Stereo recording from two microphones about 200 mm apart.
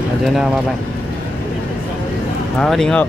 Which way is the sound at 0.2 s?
Centre (ahead or behind).